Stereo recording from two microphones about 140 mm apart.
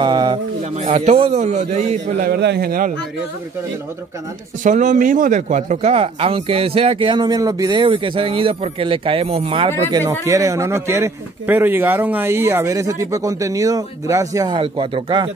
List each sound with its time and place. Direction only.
0.0 s bird: 30° right (ahead or behind)
0.7 s speech: 50° right (ahead or behind)
2.2 s a man's voice: 90° right
4.6 s speech: 65° right (ahead or behind); by 9.7 s 40° right (ahead or behind)
10.2 s speech: 25° right (ahead or behind)
14.6 s speech: 40° right (ahead or behind)